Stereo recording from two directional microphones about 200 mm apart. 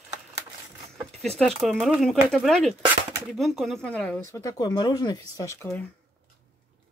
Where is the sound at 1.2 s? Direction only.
Centre (ahead or behind); by 5.8 s 15° left (ahead or behind).